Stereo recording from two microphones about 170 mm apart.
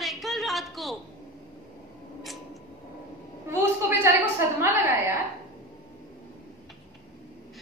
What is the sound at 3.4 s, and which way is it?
Speech, 15° right (ahead or behind).